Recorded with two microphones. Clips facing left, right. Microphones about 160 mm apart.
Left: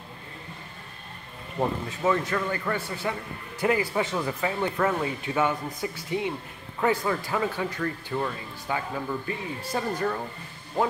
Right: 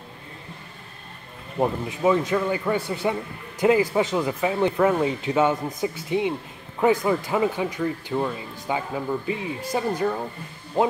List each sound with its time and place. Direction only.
1.6 s a man's voice: 15° right (ahead or behind)